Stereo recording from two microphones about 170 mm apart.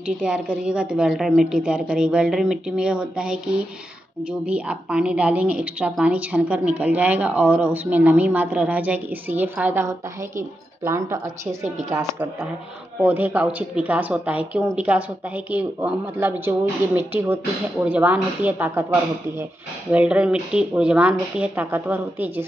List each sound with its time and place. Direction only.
0.0 s a woman's voice: 5° right (ahead or behind)
19.9 s a woman's voice: 5° right (ahead or behind)